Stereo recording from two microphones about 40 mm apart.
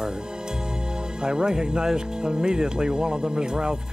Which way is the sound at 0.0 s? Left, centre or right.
Centre.